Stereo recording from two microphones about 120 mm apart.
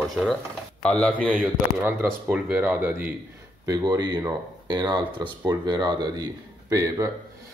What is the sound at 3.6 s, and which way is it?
Speech, 35° right (ahead or behind).